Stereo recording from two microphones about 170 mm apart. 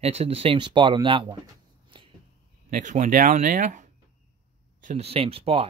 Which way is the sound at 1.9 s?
30° right (ahead or behind).